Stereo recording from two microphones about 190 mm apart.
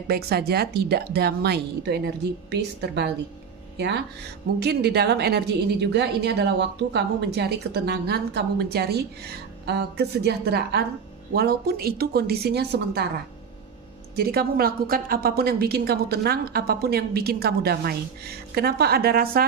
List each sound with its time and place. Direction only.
0.1 s a woman's voice: 55° right (ahead or behind)
14.1 s a woman's voice: 55° right (ahead or behind)